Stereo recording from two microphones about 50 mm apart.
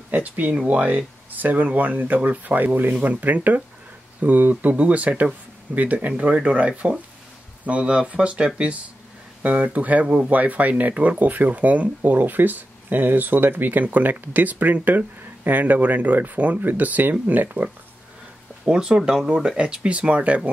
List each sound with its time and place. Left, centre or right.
0.1 s speech: right
10.0 s speech: right
10.3 s speech: right
18.7 s speech: centre
19.5 s speech: right